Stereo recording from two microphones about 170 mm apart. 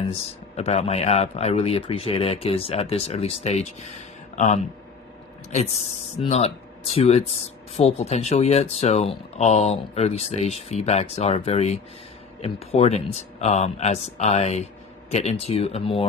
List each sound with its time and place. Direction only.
0.6 s speech: 40° left (ahead or behind)
6.2 s speech: 40° left (ahead or behind)